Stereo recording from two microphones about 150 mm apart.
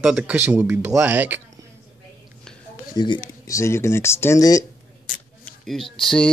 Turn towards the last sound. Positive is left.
turn(degrees=0)  # may be behind; listen again after turning